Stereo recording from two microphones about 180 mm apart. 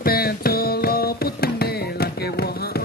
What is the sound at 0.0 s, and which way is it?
Music, 60° left (ahead or behind).